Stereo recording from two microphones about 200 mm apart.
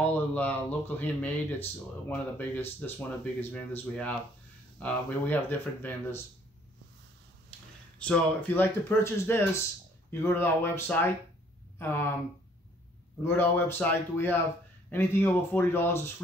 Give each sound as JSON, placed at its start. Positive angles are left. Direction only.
{"t": 0.0, "sound": "speech", "side_deg": 10}
{"t": 8.0, "sound": "speech", "side_deg": 5}
{"t": 13.2, "sound": "speech", "side_deg": 10}